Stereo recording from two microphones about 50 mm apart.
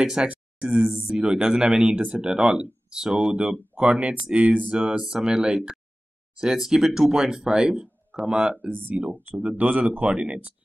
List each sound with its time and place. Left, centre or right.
0.0 s speech: centre
4.7 s speech: centre
8.6 s speech: right
9.3 s speech: right